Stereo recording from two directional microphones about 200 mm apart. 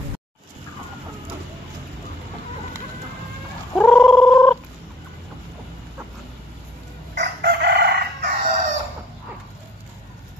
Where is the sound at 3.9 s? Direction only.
Centre (ahead or behind).